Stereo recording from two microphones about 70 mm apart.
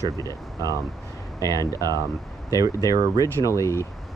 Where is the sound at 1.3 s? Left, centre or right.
Left.